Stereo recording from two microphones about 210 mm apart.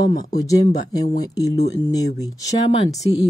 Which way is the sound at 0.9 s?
15° left (ahead or behind).